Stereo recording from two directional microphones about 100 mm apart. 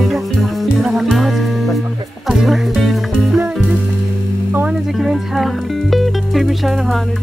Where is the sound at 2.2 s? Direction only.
Centre (ahead or behind).